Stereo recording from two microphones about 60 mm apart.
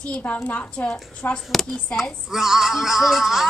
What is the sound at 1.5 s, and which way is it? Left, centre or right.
Speech, centre.